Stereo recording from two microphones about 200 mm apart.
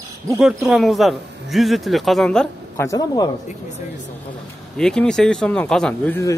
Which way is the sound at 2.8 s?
15° left (ahead or behind).